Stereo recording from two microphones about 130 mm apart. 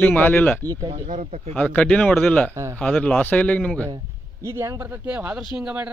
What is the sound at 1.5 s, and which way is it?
Speech, 10° left (ahead or behind).